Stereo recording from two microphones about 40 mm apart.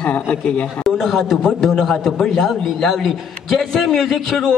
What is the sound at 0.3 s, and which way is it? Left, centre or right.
Speech, left.